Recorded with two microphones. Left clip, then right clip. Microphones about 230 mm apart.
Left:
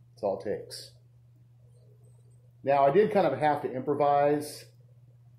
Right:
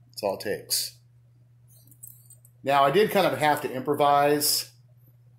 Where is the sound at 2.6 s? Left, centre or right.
Right.